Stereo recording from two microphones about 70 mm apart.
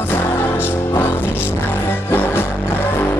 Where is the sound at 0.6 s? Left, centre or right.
Left.